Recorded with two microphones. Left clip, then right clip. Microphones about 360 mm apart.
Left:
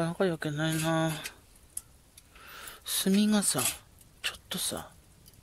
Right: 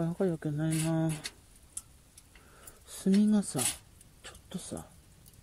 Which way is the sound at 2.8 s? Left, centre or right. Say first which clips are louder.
Left 2 dB; left.